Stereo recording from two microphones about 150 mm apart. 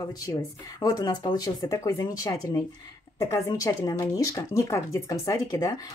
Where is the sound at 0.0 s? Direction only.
25° left (ahead or behind).